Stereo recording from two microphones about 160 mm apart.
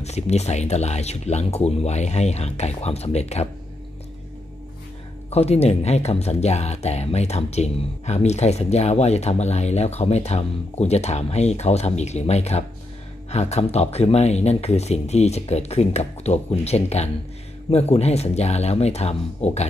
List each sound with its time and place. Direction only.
0.0 s speech: 40° left (ahead or behind)
5.3 s speech: 40° left (ahead or behind)